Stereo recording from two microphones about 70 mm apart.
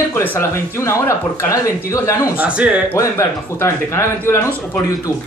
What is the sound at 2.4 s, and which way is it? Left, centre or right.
Speech, centre.